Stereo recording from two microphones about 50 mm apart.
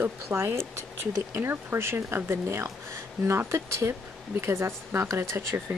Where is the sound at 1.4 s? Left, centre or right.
Right.